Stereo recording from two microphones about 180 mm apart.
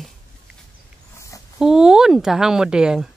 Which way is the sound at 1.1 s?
15° left (ahead or behind).